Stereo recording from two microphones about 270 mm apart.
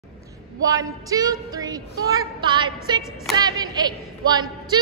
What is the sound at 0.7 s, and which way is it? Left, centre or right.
A woman's voice, centre.